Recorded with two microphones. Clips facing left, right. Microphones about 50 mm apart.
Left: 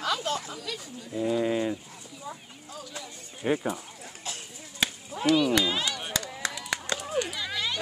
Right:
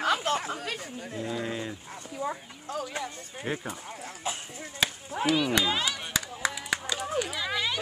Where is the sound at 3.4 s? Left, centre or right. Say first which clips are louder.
Left 6 dB; centre.